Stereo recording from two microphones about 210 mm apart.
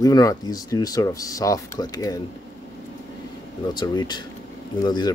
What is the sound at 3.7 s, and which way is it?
Speech, 20° left (ahead or behind).